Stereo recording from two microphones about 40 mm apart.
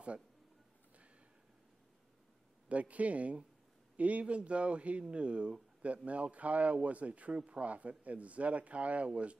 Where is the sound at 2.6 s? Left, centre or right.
Right.